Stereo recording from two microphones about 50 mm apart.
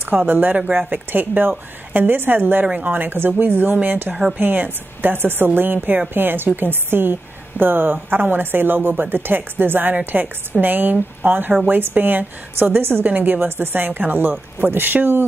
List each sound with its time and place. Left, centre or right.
0.2 s speech: right
2.6 s speech: right
4.1 s a woman's voice: centre
4.4 s a woman's voice: right
13.4 s a woman's voice: right